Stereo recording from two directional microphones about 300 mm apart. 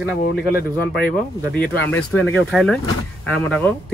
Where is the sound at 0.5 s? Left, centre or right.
Left.